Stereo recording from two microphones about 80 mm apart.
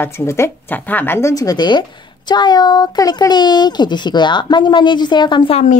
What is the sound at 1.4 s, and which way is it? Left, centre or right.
Speech, left.